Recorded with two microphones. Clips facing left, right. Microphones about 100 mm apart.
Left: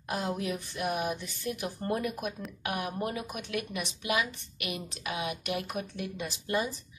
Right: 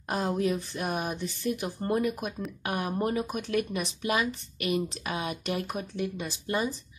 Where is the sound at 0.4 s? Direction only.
35° right (ahead or behind).